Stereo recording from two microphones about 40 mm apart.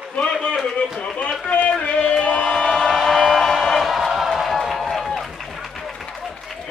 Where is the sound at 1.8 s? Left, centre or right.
Left.